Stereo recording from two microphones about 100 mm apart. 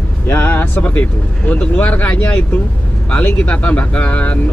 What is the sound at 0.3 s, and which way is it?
Speech, 20° left (ahead or behind).